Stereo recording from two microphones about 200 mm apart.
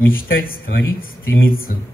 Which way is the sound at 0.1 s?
45° left (ahead or behind).